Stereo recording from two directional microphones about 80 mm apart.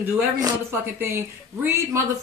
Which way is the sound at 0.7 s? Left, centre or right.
Right.